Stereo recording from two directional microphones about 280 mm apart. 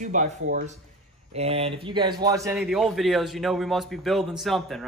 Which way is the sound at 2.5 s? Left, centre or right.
Centre.